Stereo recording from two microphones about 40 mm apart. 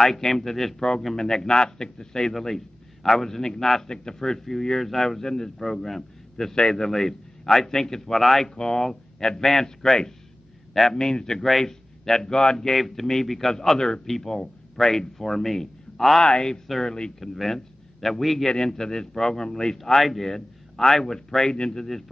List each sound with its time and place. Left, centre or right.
0.0 s a man's voice: centre
0.7 s a man's voice: centre
8.5 s a man's voice: centre
12.7 s a man's voice: centre
17.2 s a man's voice: centre
19.8 s speech: centre
21.5 s speech: left